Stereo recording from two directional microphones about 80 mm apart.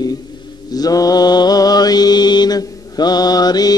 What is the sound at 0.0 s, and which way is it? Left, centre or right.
Mantra, left.